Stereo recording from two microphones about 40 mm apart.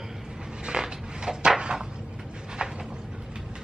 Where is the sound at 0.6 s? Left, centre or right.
Right.